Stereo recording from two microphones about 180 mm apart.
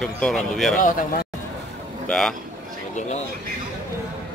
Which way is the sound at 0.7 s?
50° left (ahead or behind).